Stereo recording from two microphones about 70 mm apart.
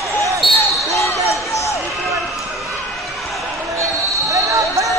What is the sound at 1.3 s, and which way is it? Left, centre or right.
Music, left.